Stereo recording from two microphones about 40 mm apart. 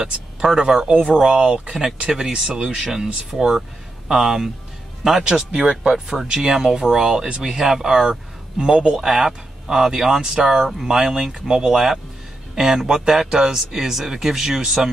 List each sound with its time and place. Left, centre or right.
0.0 s speech: centre